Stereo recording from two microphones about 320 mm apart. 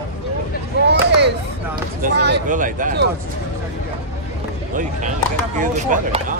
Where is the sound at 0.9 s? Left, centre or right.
Right.